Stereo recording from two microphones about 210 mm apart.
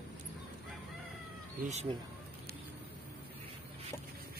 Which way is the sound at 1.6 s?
35° right (ahead or behind).